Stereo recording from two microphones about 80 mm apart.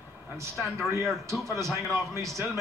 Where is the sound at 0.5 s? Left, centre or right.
Centre.